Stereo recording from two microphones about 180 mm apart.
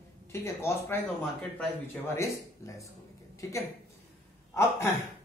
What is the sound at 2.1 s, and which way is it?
Speech, 15° left (ahead or behind).